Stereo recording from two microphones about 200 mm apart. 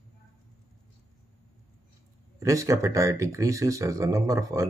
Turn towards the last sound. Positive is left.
turn(degrees=-15)  # may be behind; listen again after turning